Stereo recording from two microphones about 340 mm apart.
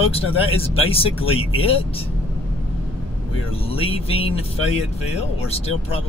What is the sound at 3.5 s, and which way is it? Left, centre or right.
Speech, centre.